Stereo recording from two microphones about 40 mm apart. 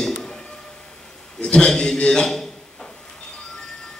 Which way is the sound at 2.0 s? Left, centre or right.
Centre.